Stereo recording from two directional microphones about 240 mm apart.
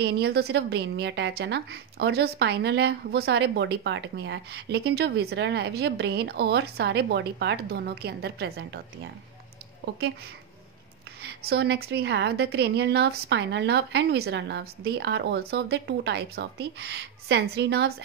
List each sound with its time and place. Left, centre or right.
0.0 s a woman's voice: right
11.2 s a woman's voice: right